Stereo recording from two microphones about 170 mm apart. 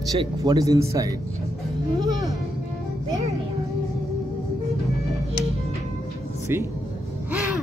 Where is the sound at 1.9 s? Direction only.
20° right (ahead or behind).